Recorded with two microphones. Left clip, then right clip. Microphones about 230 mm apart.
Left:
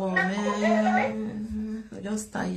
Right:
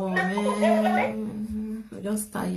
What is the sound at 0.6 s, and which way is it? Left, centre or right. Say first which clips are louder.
Music: right 1 dB; right.